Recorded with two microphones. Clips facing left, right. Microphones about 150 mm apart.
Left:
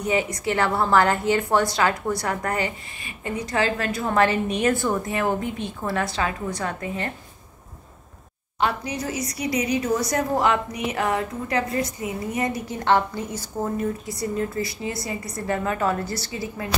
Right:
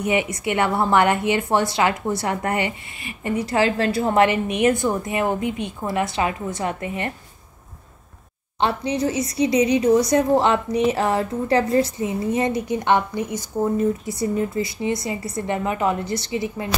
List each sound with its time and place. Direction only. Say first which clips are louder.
0.0 s a woman's voice: right 2 dB; 20° right (ahead or behind)
3.0 s speech: right 5 dB; 25° left (ahead or behind)
3.3 s a woman's voice: right 4 dB; 30° right (ahead or behind)
4.1 s a woman's voice: even; 20° right (ahead or behind)
8.5 s a woman's voice: right 3 dB; 25° right (ahead or behind)